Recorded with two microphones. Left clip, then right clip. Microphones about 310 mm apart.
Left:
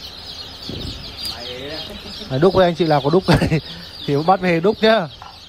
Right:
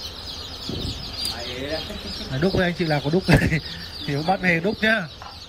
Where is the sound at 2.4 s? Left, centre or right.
Right.